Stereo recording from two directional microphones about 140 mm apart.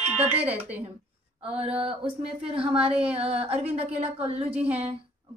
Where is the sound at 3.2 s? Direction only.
45° right (ahead or behind).